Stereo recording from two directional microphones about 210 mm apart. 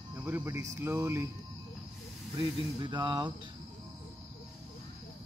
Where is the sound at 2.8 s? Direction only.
20° right (ahead or behind).